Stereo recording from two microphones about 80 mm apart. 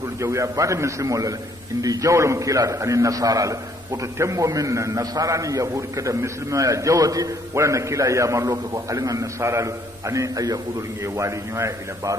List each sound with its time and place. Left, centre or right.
0.2 s a man's voice: right